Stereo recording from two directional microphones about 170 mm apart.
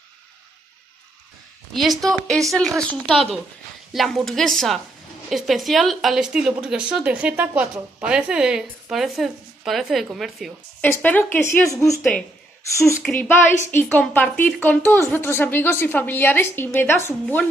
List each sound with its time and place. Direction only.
1.7 s a woman's voice: centre (ahead or behind)
10.8 s a woman's voice: 10° left (ahead or behind)